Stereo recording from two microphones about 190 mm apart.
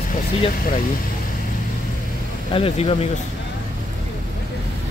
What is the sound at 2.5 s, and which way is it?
Speech, 30° left (ahead or behind).